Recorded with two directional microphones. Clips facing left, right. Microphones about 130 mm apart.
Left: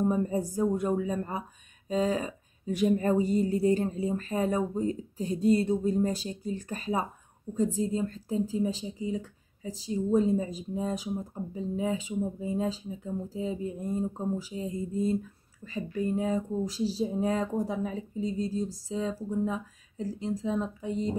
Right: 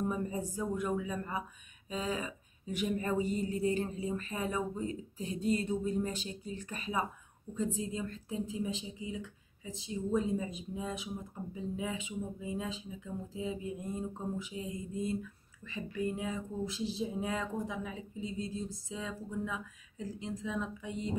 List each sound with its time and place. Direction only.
0.0 s speech: 35° left (ahead or behind)